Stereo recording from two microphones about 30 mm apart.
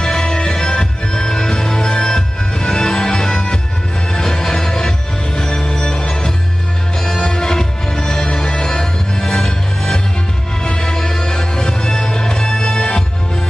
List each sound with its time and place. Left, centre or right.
0.0 s music: left